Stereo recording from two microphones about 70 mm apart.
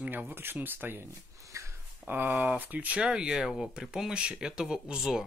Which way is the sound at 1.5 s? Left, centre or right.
Right.